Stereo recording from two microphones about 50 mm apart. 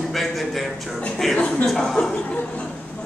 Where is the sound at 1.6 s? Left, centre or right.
Centre.